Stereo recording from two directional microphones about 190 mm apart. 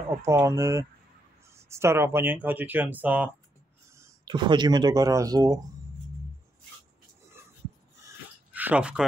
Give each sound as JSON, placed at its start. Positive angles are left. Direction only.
{"t": 0.2, "sound": "speech", "side_deg": -15}
{"t": 4.0, "sound": "speech", "side_deg": -20}
{"t": 8.5, "sound": "speech", "side_deg": -10}